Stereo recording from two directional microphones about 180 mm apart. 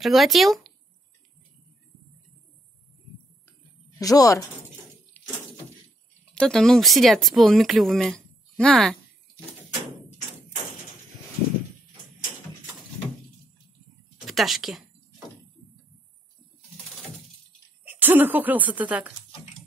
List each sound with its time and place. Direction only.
0.0 s speech: centre (ahead or behind)
4.0 s speech: 20° left (ahead or behind)
5.2 s a sound: 10° left (ahead or behind)
6.3 s speech: 5° left (ahead or behind)
14.2 s speech: centre (ahead or behind)
17.8 s speech: 10° right (ahead or behind)